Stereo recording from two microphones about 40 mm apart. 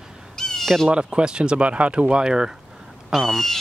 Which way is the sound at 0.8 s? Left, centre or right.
Right.